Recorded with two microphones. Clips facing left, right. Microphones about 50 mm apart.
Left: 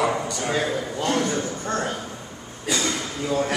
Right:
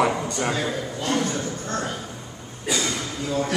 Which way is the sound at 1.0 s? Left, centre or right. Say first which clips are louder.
Left 1 dB; centre.